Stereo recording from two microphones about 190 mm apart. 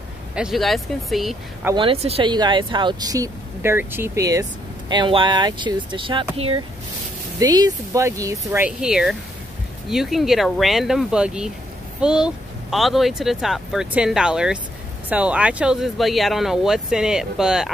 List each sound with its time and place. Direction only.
0.4 s speech: centre (ahead or behind)
1.8 s speech: 30° right (ahead or behind)
7.3 s speech: 20° right (ahead or behind); by 17.6 s 5° right (ahead or behind)